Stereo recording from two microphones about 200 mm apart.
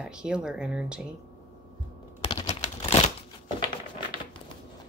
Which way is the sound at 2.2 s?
25° left (ahead or behind).